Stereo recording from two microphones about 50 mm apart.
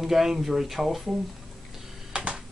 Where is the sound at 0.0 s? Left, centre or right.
Centre.